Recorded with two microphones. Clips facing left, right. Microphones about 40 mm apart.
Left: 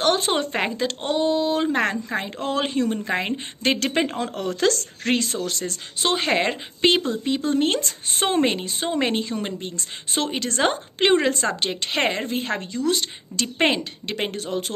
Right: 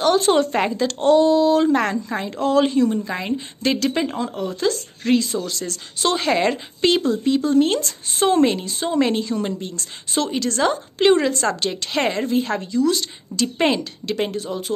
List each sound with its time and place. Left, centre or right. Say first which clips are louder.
0.2 s speech: right 5 dB; left
4.2 s speech: right 1 dB; left
5.1 s speech: right 5 dB; left
5.4 s a woman's voice: even; left
14.3 s speech: right 1 dB; left